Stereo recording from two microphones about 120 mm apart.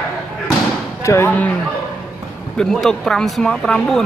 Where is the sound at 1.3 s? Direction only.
15° left (ahead or behind).